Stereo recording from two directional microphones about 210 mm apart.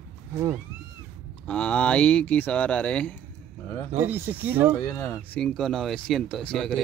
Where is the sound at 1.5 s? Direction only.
5° left (ahead or behind).